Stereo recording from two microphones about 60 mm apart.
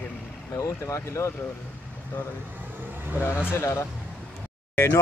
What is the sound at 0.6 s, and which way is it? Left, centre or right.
Speech, left.